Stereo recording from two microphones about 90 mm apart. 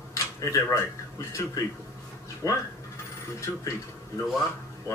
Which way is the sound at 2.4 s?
35° left (ahead or behind).